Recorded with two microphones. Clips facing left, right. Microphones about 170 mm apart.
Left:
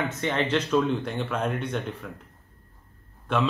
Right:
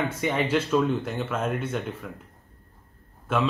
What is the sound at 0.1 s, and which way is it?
Speech, 10° right (ahead or behind).